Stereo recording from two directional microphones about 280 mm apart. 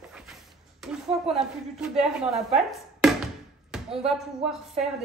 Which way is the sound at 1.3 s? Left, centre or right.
Centre.